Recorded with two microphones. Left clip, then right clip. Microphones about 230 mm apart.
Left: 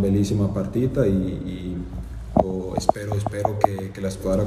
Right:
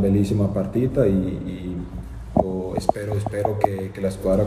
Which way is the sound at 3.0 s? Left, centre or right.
Centre.